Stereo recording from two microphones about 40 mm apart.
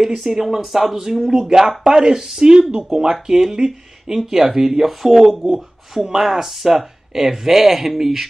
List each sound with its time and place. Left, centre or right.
0.0 s speech: centre